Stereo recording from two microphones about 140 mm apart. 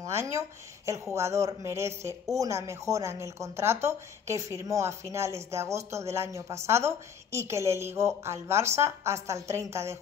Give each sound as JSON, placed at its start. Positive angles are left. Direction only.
{"t": 0.0, "sound": "a woman's voice", "side_deg": -20}